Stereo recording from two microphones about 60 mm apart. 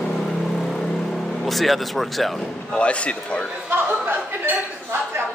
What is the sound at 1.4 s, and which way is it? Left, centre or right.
Speech, centre.